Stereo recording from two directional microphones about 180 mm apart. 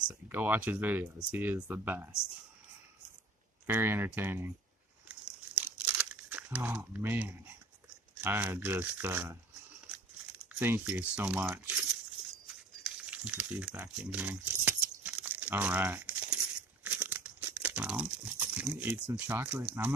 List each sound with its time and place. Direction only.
0.1 s speech: 10° right (ahead or behind)
3.6 s speech: 10° right (ahead or behind)
5.0 s crumpling: 5° right (ahead or behind)
8.2 s speech: 10° right (ahead or behind)
10.6 s speech: 10° right (ahead or behind)
12.8 s a sound: 5° right (ahead or behind)
14.1 s crumpling: 10° right (ahead or behind)
16.8 s speech: 10° right (ahead or behind)